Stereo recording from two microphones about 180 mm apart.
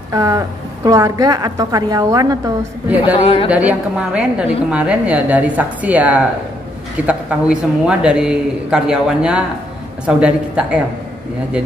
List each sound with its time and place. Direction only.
0.1 s a woman's voice: 20° right (ahead or behind)
3.0 s speech: 30° left (ahead or behind)
3.4 s a woman's voice: 5° right (ahead or behind)